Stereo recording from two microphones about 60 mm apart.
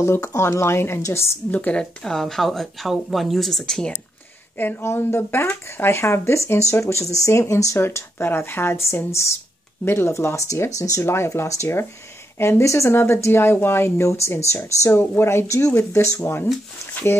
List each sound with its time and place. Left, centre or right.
0.0 s speech: left
1.5 s speech: left
1.8 s speech: centre
4.6 s speech: left
11.1 s speech: left